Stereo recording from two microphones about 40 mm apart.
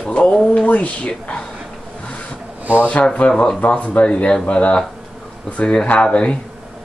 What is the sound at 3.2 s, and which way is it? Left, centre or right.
Speech, left.